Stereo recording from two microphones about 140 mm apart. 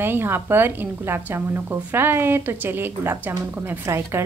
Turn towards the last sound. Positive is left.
turn(degrees=-20)  # may be behind; listen again after turning